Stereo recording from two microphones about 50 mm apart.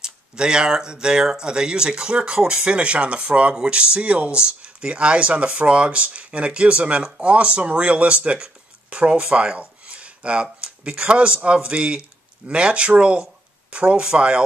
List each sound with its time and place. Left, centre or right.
0.0 s speech: centre